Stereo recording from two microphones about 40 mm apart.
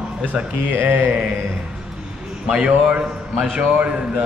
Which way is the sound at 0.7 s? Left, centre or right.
Right.